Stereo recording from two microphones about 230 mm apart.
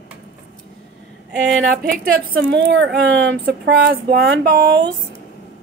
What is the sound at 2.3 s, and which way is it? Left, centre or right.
Speech, right.